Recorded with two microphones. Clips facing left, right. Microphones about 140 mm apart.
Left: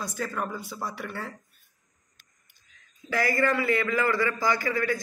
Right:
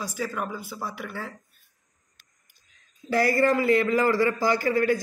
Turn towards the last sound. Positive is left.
turn(degrees=-40)  # may be behind; listen again after turning